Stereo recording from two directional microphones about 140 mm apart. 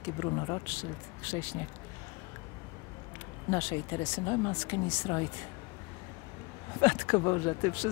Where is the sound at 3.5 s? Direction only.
25° left (ahead or behind).